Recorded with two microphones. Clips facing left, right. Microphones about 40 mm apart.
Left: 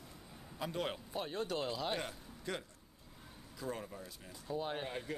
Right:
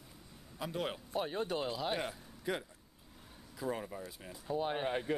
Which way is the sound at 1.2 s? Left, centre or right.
Centre.